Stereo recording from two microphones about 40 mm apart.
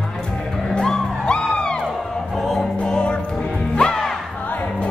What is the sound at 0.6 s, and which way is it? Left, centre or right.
Music, centre.